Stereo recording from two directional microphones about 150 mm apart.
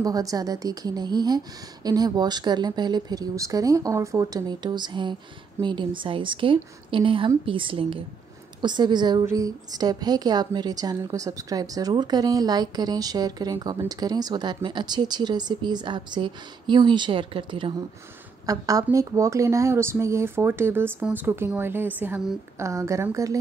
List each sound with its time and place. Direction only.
0.0 s a woman's voice: 25° right (ahead or behind)